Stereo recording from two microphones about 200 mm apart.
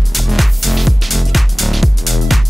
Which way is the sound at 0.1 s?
Centre (ahead or behind).